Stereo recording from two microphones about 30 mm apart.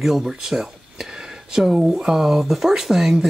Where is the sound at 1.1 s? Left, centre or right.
Right.